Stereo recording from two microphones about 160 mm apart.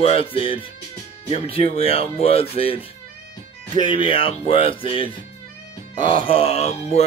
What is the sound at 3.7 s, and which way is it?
Speech, 30° left (ahead or behind).